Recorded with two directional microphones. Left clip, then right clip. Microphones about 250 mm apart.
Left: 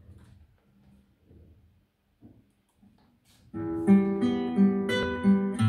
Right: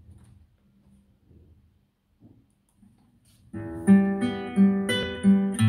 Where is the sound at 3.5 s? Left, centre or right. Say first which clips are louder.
Right 1 dB; right.